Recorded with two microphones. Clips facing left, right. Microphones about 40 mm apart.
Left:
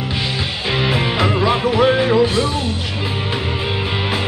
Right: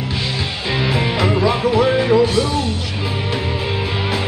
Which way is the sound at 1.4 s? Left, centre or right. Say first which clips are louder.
Left 1 dB; left.